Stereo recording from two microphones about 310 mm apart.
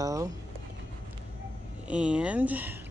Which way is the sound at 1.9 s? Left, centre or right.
Centre.